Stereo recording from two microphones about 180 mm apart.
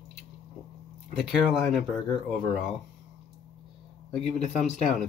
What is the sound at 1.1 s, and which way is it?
Speech, 5° right (ahead or behind).